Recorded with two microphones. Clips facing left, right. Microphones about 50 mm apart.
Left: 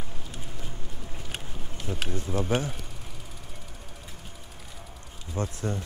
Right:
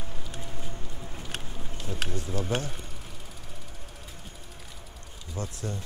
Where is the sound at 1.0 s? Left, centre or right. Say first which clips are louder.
Even; centre.